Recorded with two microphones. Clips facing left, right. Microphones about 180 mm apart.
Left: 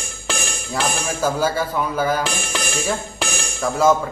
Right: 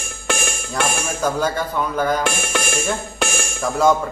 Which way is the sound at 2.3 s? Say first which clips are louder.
Right 2 dB; 55° right (ahead or behind).